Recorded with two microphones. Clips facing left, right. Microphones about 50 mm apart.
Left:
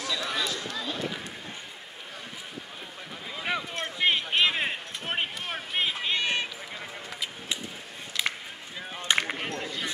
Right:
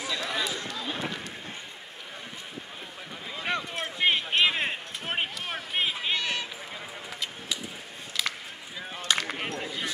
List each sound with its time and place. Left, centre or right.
0.2 s basketball bounce: centre
0.7 s run: centre
3.3 s run: centre
6.1 s run: centre
8.2 s a sound: left
9.4 s a sound: centre